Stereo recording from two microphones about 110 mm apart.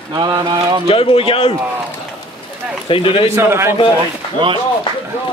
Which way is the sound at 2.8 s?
55° left (ahead or behind).